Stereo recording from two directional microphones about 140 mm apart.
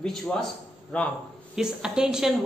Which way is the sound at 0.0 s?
5° left (ahead or behind).